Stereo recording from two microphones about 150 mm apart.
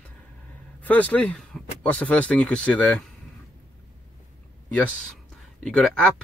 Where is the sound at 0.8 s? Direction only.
10° left (ahead or behind).